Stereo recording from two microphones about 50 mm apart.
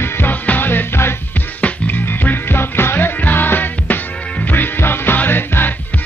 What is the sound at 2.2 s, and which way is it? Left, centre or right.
Music, left.